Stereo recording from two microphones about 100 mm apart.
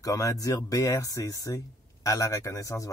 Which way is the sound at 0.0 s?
35° left (ahead or behind).